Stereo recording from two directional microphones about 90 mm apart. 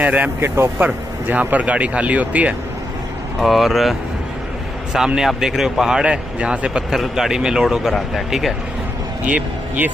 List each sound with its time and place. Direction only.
0.0 s speech: 20° right (ahead or behind)
3.3 s speech: centre (ahead or behind)
4.9 s speech: 5° right (ahead or behind)
9.2 s speech: 20° right (ahead or behind)